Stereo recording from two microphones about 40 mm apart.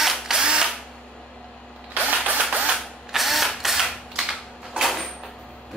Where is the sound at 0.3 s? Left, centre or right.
Centre.